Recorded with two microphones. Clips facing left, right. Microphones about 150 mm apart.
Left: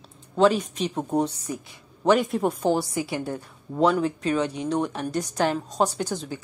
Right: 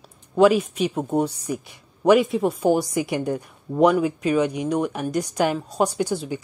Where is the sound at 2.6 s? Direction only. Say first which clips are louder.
Right 4 dB; 15° right (ahead or behind).